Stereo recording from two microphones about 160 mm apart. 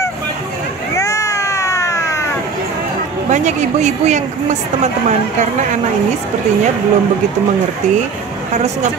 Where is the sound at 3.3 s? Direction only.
45° right (ahead or behind).